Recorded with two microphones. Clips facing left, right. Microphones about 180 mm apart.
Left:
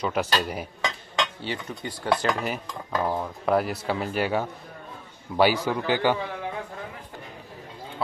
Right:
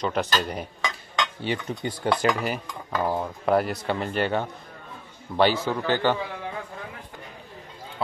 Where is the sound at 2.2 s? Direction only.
Centre (ahead or behind).